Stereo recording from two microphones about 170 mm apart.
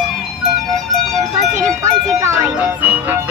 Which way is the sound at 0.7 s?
Centre (ahead or behind).